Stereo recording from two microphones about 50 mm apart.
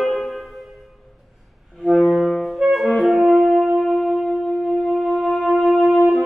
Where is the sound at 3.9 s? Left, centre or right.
Centre.